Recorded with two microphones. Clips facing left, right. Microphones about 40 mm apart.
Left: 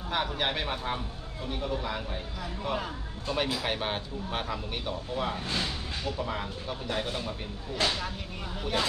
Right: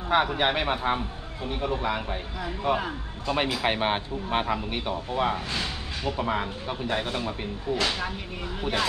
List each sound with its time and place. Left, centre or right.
0.1 s speech: right